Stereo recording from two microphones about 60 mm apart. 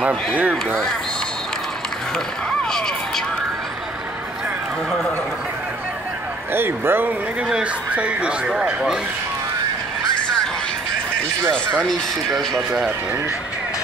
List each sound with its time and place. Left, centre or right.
0.4 s speech: right
6.5 s speech: right
7.4 s speech: centre
11.9 s speech: centre